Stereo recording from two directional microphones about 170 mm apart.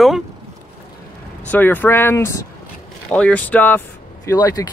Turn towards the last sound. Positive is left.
turn(degrees=20)  # may be behind; listen again after turning